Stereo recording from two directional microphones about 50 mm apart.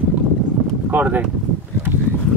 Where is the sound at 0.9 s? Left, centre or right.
Right.